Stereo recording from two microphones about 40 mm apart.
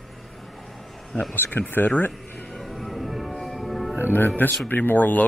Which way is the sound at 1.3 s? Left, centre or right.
Left.